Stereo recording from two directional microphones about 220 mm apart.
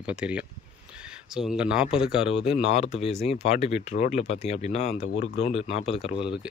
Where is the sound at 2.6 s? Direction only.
30° left (ahead or behind).